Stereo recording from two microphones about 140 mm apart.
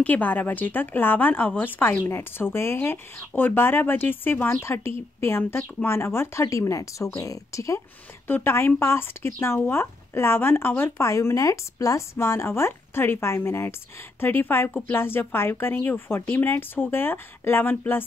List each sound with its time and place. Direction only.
0.0 s speech: 10° left (ahead or behind)